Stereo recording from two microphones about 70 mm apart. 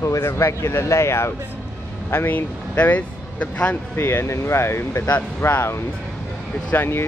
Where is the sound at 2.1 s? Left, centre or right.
Left.